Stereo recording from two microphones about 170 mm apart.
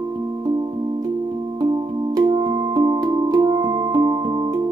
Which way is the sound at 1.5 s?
20° right (ahead or behind).